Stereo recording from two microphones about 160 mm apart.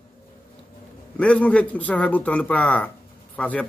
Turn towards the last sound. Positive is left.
turn(degrees=10)  # may be behind; listen again after turning